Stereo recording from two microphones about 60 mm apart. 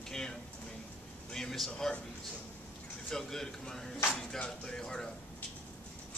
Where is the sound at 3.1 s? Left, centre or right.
Centre.